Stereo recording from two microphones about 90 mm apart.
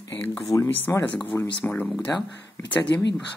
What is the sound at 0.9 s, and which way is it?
Speech, 30° left (ahead or behind).